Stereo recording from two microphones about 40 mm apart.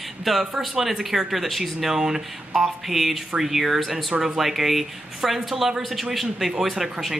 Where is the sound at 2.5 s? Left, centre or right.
Centre.